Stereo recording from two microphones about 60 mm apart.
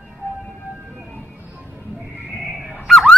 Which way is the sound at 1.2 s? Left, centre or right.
Right.